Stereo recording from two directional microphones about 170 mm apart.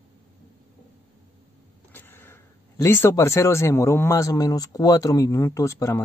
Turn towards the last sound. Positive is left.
turn(degrees=15)  # may be behind; listen again after turning